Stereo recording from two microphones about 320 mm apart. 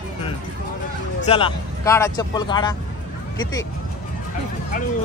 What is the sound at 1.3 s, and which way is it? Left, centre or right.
A man's voice, centre.